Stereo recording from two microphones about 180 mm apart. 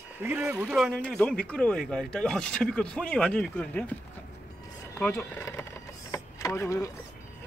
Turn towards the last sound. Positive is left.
turn(degrees=15)  # may be behind; listen again after turning